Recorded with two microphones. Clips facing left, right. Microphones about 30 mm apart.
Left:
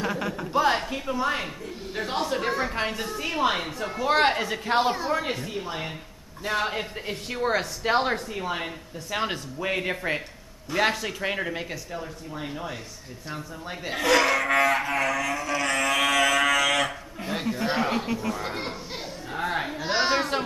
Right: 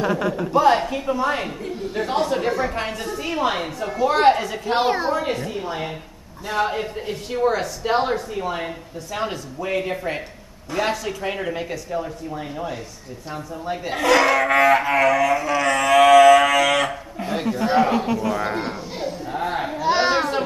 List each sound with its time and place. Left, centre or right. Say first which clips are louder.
0.0 s a woman's voice: right 7 dB; centre
2.4 s a woman's voice: right 4 dB; centre
4.7 s a woman's voice: right 4 dB; right
5.1 s a woman's voice: right 4 dB; centre
9.3 s speech: right 2 dB; left
9.8 s a man's voice: right 3 dB; centre
11.9 s speech: right 8 dB; centre
12.4 s a woman's voice: right 3 dB; centre
18.9 s children playing: right 7 dB; centre